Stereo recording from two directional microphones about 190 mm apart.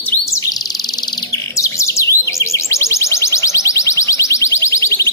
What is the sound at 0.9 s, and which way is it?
Bird, 20° left (ahead or behind).